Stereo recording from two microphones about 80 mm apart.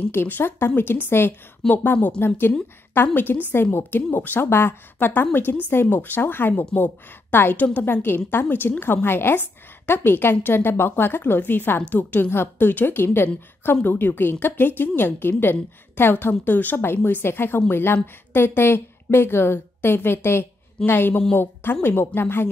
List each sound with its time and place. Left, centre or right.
0.1 s a woman's voice: left